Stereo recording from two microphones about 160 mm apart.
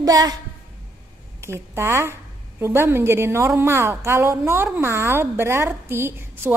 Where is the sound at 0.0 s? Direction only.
25° right (ahead or behind).